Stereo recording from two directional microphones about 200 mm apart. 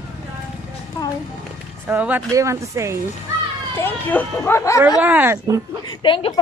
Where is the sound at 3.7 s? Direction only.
10° left (ahead or behind).